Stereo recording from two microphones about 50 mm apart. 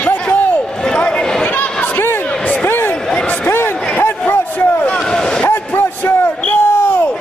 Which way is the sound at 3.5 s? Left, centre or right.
Left.